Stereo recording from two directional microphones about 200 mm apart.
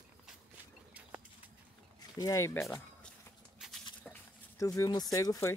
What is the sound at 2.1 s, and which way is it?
Speech, 15° left (ahead or behind).